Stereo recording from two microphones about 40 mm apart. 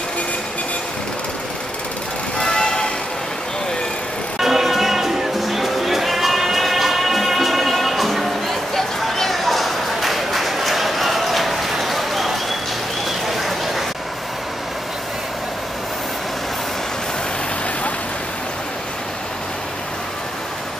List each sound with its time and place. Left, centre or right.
2.4 s vehicle: centre
4.4 s music: centre
13.3 s a sound: centre